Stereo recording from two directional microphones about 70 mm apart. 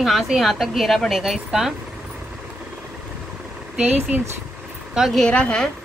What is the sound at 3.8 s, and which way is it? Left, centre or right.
Speech, right.